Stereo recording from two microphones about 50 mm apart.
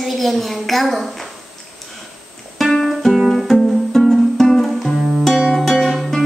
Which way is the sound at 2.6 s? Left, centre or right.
Centre.